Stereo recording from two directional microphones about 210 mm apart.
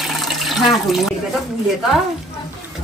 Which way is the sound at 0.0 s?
Centre (ahead or behind).